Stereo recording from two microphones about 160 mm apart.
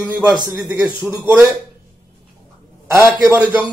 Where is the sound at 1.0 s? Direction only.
15° right (ahead or behind).